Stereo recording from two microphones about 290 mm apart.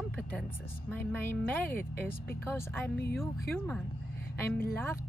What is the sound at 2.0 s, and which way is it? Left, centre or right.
Speech, centre.